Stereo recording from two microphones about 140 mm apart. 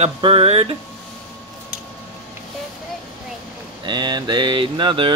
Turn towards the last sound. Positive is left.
turn(degrees=-35)  # may be behind; listen again after turning